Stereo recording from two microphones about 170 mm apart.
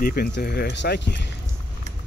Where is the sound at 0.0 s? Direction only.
65° left (ahead or behind); by 1.2 s 80° left.